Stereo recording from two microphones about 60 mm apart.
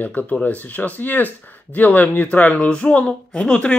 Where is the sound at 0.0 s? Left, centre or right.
Left.